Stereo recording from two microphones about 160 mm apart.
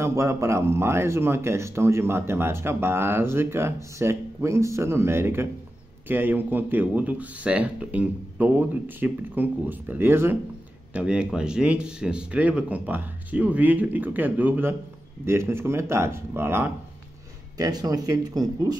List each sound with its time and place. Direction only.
0.0 s speech: 20° right (ahead or behind)